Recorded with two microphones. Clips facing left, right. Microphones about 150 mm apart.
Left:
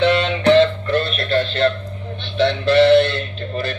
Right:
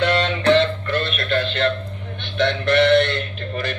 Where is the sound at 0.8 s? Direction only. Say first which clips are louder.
Left 3 dB; 30° left (ahead or behind).